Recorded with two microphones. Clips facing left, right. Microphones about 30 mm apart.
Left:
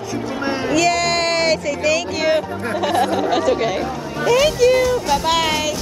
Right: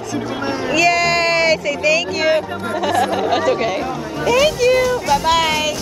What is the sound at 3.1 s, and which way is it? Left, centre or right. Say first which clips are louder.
Speech: right 1 dB; centre.